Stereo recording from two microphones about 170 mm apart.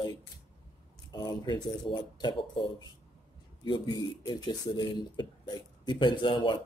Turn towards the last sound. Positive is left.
turn(degrees=30)  # may be behind; listen again after turning